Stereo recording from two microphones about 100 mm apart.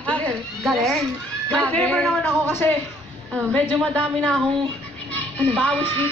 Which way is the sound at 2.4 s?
20° left (ahead or behind).